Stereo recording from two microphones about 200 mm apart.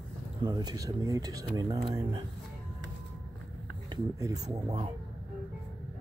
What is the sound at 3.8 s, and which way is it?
Speech, 15° right (ahead or behind).